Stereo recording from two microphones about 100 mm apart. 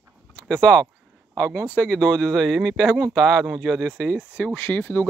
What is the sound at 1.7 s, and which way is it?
Speech, 10° left (ahead or behind).